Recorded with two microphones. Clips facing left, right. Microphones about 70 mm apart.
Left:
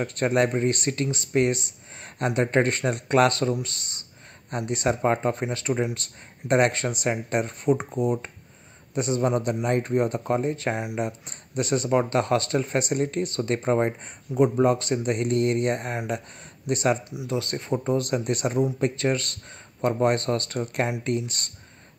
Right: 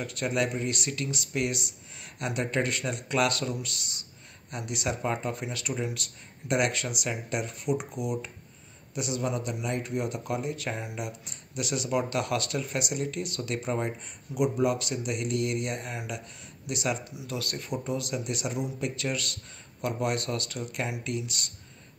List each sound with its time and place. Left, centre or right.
0.0 s speech: left
17.1 s speech: left
17.9 s speech: left